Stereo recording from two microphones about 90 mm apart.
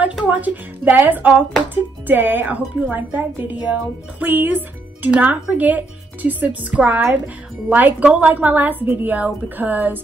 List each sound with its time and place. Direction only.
0.2 s a woman's voice: 15° right (ahead or behind)